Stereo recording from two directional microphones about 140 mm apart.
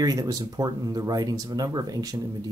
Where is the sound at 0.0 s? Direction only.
25° right (ahead or behind).